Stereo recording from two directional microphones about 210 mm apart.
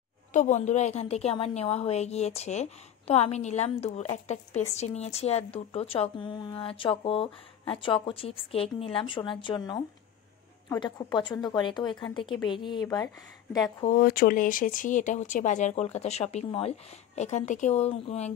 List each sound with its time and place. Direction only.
0.3 s a woman's voice: 35° left (ahead or behind); by 13.8 s 15° left (ahead or behind)
13.8 s speech: 45° left (ahead or behind)